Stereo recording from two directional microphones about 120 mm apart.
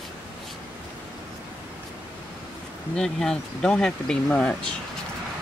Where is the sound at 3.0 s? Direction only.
5° left (ahead or behind).